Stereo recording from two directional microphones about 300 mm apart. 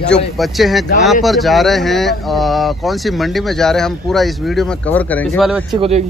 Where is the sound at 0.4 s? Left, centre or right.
Centre.